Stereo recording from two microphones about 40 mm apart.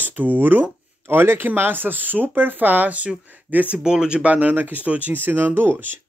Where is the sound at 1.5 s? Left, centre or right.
Right.